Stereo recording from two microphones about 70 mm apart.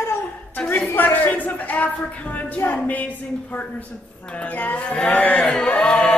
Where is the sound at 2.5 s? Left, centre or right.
Left.